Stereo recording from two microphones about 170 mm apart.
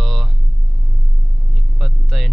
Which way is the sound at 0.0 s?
Centre (ahead or behind).